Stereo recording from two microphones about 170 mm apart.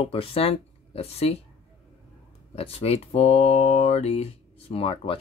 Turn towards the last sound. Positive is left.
turn(degrees=35)  # may be behind; listen again after turning